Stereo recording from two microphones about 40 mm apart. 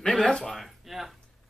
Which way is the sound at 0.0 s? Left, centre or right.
Centre.